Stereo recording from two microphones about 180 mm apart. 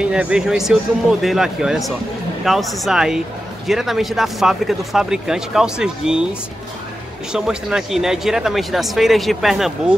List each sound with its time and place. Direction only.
0.0 s speech: 5° right (ahead or behind)
7.3 s speech: 5° right (ahead or behind)